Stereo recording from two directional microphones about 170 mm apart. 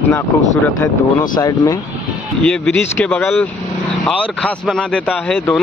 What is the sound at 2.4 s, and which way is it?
Speech, 5° left (ahead or behind).